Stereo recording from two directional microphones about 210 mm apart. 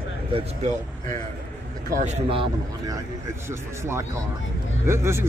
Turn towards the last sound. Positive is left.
turn(degrees=-10)  # may be behind; listen again after turning